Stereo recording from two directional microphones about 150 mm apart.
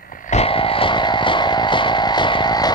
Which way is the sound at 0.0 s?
65° left (ahead or behind).